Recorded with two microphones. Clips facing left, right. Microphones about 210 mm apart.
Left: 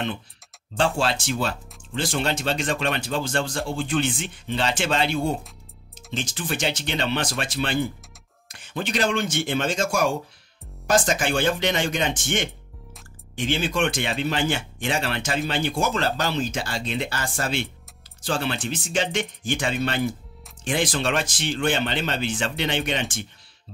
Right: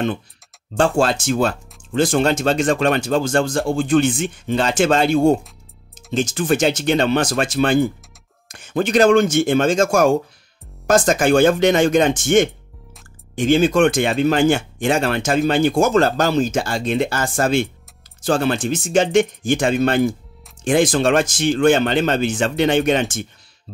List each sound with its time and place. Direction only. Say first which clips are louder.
0.7 s speech: right 6 dB; 45° right (ahead or behind)